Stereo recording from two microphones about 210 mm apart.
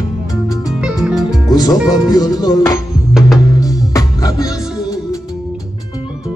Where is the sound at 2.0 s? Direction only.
20° left (ahead or behind).